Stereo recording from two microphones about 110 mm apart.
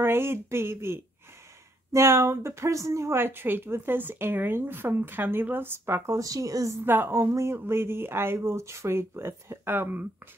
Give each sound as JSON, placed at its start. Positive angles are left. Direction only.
{"t": 0.0, "sound": "a woman's voice", "side_deg": -20}
{"t": 6.8, "sound": "a woman's voice", "side_deg": -20}